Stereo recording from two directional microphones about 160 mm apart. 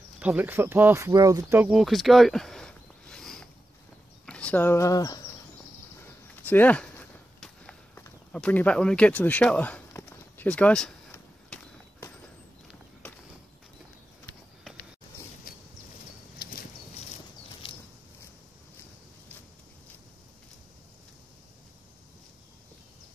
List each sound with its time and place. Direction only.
0.2 s speech: 10° right (ahead or behind)
1.6 s a sound: 5° right (ahead or behind)
4.3 s speech: 10° left (ahead or behind)
5.9 s walk: 10° left (ahead or behind)
7.9 s a sound: 15° left (ahead or behind)
8.4 s speech: 10° left (ahead or behind)